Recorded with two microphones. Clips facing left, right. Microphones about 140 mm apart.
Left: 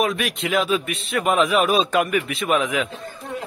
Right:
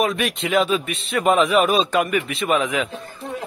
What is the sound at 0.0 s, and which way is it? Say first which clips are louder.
Speech: right 1 dB; centre (ahead or behind).